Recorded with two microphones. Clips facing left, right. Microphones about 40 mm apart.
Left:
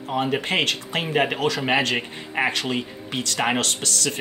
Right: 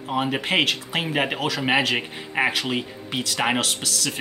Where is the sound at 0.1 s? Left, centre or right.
Centre.